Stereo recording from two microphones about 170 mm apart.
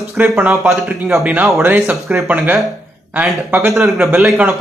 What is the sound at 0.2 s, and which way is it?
Speech, centre (ahead or behind).